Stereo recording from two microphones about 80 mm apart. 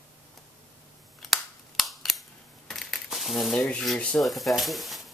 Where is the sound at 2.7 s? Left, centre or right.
Centre.